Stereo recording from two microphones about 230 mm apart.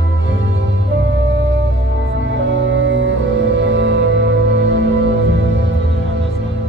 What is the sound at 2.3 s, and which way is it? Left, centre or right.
Music, right.